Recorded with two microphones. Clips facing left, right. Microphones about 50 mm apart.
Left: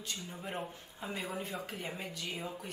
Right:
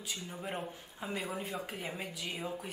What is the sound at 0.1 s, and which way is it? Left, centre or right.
A woman's voice, centre.